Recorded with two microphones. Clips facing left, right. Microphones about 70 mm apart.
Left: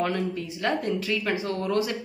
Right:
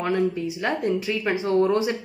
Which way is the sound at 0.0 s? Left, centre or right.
Centre.